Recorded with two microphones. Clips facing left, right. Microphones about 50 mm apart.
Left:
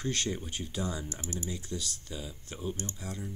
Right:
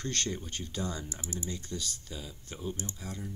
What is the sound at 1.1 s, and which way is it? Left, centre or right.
Speech, left.